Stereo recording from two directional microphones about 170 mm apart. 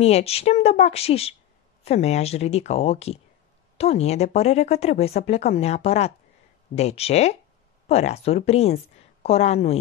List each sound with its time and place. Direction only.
0.0 s speech: 40° left (ahead or behind)